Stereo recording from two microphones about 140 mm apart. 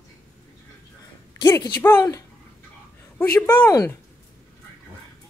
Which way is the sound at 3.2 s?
15° left (ahead or behind).